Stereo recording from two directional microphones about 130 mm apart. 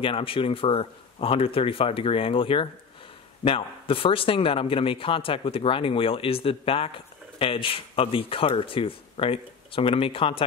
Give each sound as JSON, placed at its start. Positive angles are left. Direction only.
{"t": 0.0, "sound": "speech", "side_deg": 45}